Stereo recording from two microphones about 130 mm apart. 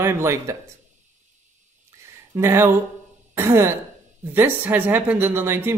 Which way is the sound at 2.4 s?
20° right (ahead or behind).